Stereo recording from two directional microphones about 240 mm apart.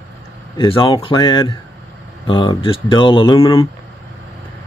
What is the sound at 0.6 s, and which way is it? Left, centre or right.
Speech, left.